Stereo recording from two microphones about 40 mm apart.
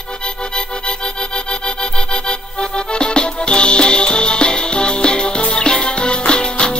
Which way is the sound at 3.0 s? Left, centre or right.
Left.